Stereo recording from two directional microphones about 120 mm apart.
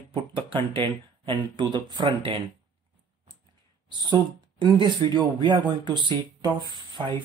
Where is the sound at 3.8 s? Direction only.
40° right (ahead or behind).